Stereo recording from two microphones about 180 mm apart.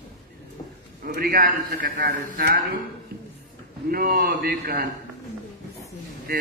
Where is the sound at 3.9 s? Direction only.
55° right (ahead or behind).